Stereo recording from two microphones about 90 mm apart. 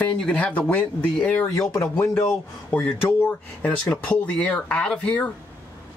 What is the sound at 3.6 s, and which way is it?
Speech, 15° left (ahead or behind).